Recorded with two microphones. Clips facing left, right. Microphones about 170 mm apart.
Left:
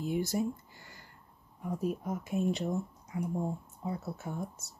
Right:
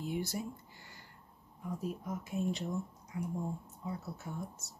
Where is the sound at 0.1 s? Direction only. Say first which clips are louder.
Left 8 dB; 45° left (ahead or behind).